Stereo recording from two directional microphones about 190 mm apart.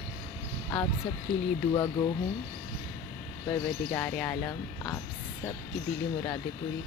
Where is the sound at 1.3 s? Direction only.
5° left (ahead or behind).